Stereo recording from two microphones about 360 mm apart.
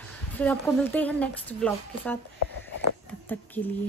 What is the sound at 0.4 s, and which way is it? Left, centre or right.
Speech, centre.